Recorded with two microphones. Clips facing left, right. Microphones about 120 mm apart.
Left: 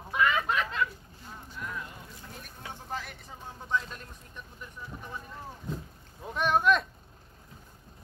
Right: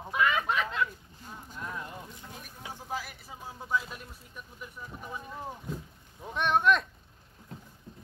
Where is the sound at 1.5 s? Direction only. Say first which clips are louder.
Even; 25° right (ahead or behind).